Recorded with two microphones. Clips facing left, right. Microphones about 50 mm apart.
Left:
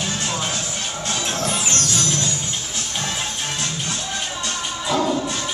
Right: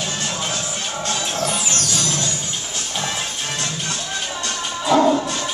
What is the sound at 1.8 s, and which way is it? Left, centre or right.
Music, left.